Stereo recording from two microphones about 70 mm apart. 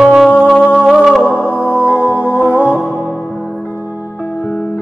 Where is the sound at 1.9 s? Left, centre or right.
Right.